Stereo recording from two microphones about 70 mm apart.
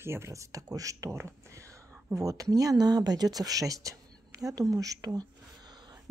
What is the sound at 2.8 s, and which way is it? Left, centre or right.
A woman's voice, right.